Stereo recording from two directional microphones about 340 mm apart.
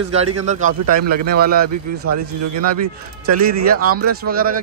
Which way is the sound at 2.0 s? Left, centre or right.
Right.